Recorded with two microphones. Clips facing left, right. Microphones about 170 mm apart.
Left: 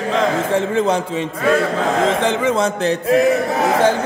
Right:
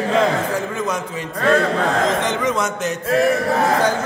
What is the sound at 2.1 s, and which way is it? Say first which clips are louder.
Speech: left 3 dB; 30° left (ahead or behind).